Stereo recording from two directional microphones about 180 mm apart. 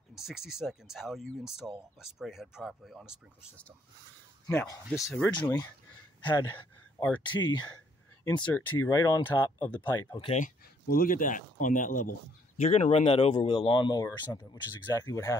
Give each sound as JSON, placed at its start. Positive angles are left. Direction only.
{"t": 0.1, "sound": "speech", "side_deg": 0}
{"t": 4.5, "sound": "speech", "side_deg": 10}
{"t": 6.2, "sound": "speech", "side_deg": 20}
{"t": 8.2, "sound": "speech", "side_deg": 10}
{"t": 10.4, "sound": "speech", "side_deg": 50}
{"t": 12.5, "sound": "speech", "side_deg": 35}